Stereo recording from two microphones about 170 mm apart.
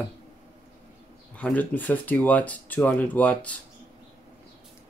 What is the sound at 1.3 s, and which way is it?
Speech, 10° left (ahead or behind).